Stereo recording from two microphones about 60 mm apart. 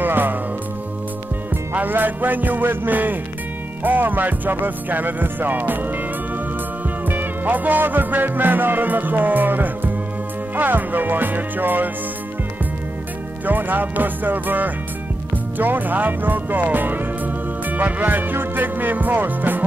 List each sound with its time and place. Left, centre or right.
0.0 s music: right
1.7 s music: right
7.1 s music: right
13.5 s music: right